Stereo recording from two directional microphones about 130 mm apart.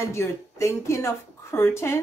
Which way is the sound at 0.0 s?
20° left (ahead or behind).